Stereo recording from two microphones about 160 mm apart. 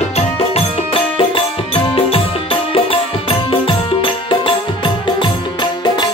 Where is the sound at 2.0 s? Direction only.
35° left (ahead or behind).